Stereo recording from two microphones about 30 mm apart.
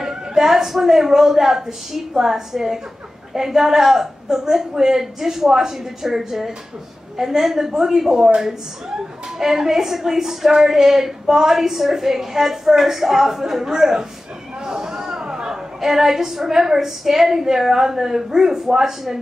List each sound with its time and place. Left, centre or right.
0.0 s a woman's voice: centre
9.4 s a woman's voice: centre
14.6 s a sound: right
15.8 s a woman's voice: centre